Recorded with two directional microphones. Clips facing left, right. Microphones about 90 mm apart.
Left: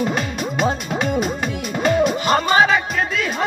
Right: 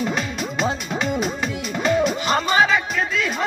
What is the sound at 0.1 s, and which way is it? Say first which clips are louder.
Music: left 2 dB; 50° left (ahead or behind).